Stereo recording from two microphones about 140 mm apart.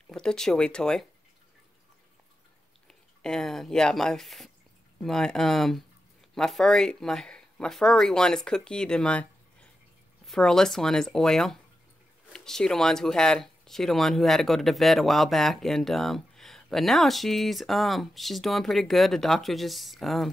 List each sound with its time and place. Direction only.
0.1 s speech: 5° left (ahead or behind)
2.9 s speech: 5° left (ahead or behind)